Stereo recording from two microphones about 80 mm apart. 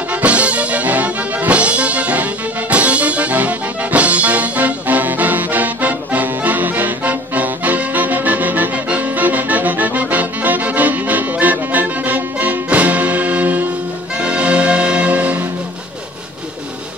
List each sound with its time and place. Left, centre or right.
0.1 s music: centre